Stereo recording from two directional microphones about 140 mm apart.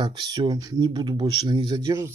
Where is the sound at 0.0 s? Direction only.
30° right (ahead or behind).